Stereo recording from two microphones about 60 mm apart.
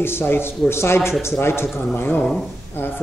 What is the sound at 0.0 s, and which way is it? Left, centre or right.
Speech, left.